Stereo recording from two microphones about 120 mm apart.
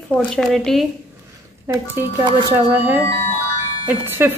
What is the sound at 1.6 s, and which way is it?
A woman's voice, 20° right (ahead or behind).